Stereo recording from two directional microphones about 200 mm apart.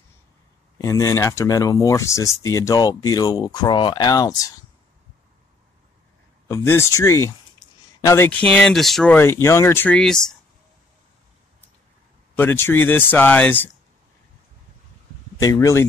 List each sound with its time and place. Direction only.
0.7 s speech: 15° left (ahead or behind)
6.4 s speech: 15° left (ahead or behind)
12.4 s speech: 10° left (ahead or behind)
15.3 s speech: 15° left (ahead or behind)